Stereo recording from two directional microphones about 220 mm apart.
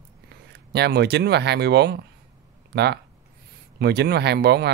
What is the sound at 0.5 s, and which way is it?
Speech, 50° right (ahead or behind).